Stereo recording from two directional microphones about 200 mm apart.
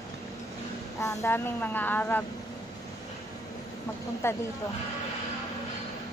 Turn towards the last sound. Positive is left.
turn(degrees=10)  # may be behind; listen again after turning